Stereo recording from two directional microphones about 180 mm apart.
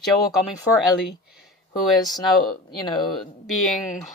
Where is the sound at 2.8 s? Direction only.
25° left (ahead or behind).